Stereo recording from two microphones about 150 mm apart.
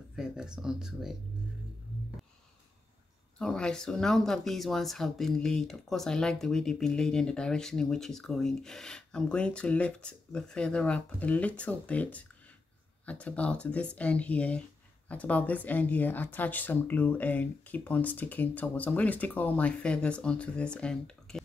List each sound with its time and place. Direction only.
0.1 s speech: 5° right (ahead or behind)
3.3 s speech: 5° left (ahead or behind)